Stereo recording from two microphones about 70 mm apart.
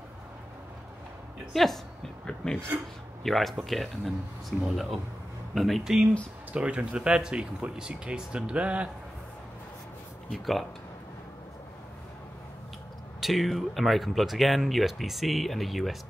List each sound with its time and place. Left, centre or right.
1.5 s a man's voice: centre
6.5 s speech: centre
10.3 s speech: centre
13.2 s speech: centre